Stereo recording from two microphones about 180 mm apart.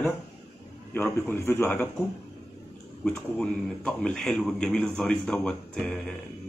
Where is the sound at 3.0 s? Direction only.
5° left (ahead or behind).